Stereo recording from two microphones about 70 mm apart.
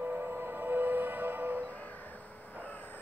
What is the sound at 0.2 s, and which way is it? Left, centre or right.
Music, right.